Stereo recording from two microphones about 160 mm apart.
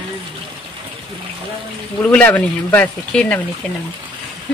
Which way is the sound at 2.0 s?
10° left (ahead or behind).